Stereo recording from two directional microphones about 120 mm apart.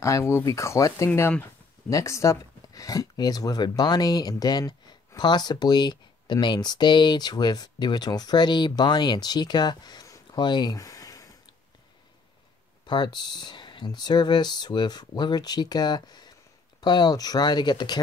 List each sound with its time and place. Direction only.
0.0 s speech: 25° left (ahead or behind)
10.4 s a sound: 40° left (ahead or behind)
12.8 s speech: 40° left (ahead or behind)